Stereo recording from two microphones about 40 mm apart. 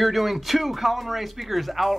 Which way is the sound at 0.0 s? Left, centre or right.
Centre.